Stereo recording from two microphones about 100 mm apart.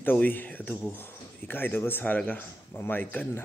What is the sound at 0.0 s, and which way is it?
Speech, 20° left (ahead or behind).